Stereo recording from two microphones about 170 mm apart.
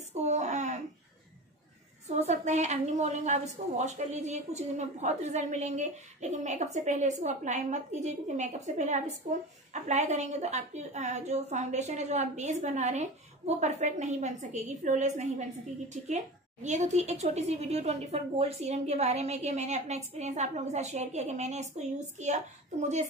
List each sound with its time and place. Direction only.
0.1 s a sound: 45° right (ahead or behind)
2.0 s a woman's voice: 40° right (ahead or behind)
16.6 s speech: 45° right (ahead or behind)